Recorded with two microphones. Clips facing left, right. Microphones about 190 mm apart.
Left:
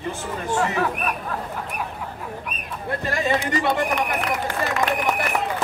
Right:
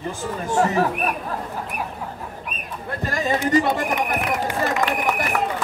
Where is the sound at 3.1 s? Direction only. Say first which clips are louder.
Right 4 dB; 40° right (ahead or behind).